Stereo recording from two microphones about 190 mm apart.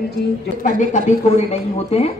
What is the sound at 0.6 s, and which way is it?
A woman's voice, 40° left (ahead or behind).